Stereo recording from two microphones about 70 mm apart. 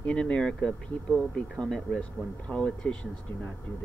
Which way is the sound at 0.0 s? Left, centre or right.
Centre.